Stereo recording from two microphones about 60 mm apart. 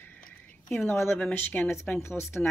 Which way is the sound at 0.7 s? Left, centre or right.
Left.